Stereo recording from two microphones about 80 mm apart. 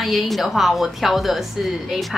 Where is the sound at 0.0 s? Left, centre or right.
Centre.